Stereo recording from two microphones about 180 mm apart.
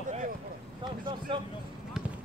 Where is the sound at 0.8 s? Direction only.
25° right (ahead or behind).